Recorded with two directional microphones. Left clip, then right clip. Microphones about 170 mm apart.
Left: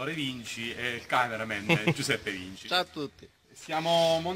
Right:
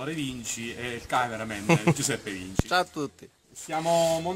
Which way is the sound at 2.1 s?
Centre (ahead or behind).